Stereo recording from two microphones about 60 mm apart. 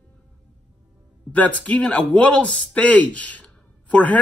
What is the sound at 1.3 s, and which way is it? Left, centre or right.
A man's voice, left.